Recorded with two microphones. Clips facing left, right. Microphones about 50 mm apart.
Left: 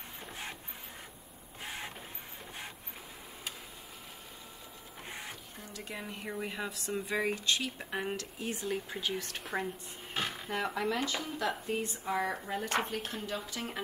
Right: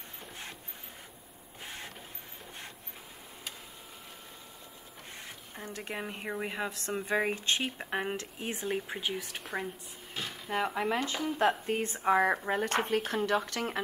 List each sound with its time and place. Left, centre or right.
5.6 s a woman's voice: right
7.1 s a woman's voice: right
9.1 s speech: centre
10.1 s dishes: left
10.5 s speech: centre
11.2 s speech: right
12.8 s speech: right